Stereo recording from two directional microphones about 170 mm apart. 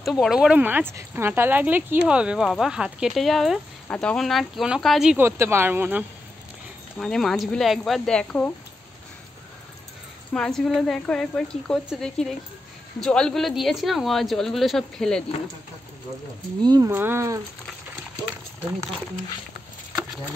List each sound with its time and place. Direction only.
0.0 s speech: centre (ahead or behind)
5.2 s speech: 15° right (ahead or behind)
7.0 s speech: centre (ahead or behind)
10.3 s speech: 5° left (ahead or behind)
16.6 s speech: 20° right (ahead or behind)